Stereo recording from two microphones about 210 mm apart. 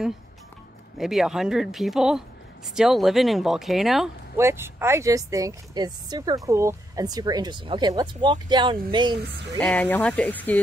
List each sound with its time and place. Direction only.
0.9 s speech: centre (ahead or behind)
4.4 s speech: 10° right (ahead or behind)
9.6 s speech: 5° left (ahead or behind)